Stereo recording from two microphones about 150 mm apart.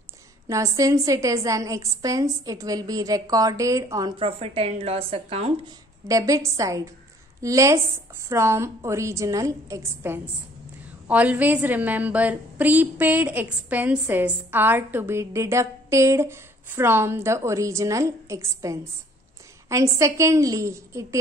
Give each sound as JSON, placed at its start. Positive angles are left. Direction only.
{"t": 0.5, "sound": "a woman's voice", "side_deg": -20}
{"t": 4.2, "sound": "speech", "side_deg": -40}
{"t": 6.0, "sound": "a woman's voice", "side_deg": -20}